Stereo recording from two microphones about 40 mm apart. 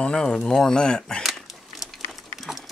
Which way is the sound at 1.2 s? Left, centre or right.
Centre.